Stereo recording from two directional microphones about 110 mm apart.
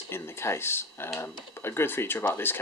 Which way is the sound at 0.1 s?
20° left (ahead or behind).